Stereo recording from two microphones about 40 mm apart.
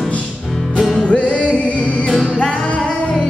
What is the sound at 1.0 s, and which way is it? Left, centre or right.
Music, left.